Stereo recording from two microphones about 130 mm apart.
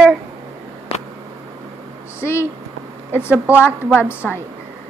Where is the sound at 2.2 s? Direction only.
20° left (ahead or behind).